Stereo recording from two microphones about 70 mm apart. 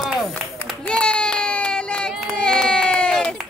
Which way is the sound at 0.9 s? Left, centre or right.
Centre.